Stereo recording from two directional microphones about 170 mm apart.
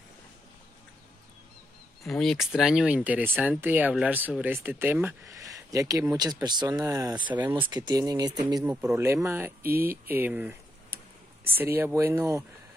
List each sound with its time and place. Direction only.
2.0 s speech: centre (ahead or behind)
11.5 s speech: 15° right (ahead or behind)